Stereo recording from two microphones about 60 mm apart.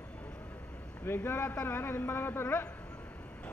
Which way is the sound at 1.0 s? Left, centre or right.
Left.